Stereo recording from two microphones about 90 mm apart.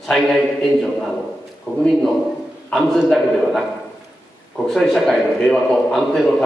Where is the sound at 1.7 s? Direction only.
20° left (ahead or behind).